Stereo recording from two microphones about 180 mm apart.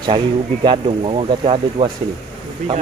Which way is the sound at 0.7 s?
30° right (ahead or behind).